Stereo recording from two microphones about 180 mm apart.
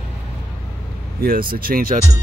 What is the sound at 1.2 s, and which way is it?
Speech, 55° right (ahead or behind).